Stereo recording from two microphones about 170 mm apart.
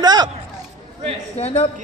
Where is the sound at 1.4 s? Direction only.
30° left (ahead or behind).